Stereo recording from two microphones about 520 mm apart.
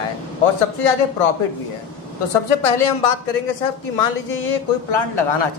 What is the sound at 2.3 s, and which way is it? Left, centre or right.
Speech, left.